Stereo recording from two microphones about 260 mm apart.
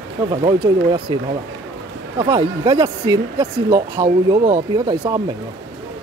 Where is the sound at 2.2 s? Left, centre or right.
Centre.